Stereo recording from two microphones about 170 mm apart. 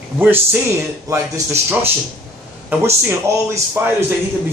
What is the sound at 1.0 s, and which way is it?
Speech, 20° right (ahead or behind).